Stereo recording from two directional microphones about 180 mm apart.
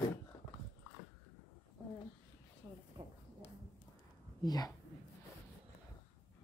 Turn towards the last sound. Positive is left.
turn(degrees=20)  # may be behind; listen again after turning